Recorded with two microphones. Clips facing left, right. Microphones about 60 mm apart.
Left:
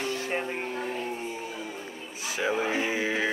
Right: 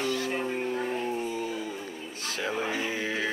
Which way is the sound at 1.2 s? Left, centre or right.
Left.